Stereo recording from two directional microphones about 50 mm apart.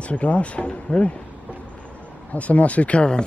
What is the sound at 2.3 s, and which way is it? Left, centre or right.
Speech, left.